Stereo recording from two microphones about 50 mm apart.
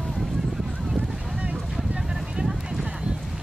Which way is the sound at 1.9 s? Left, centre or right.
Centre.